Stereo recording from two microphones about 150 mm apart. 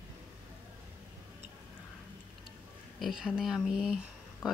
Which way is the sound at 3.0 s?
5° right (ahead or behind).